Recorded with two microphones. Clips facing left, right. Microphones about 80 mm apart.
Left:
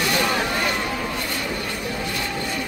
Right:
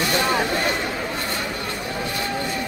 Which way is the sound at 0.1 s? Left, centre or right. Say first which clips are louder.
Right 2 dB; right.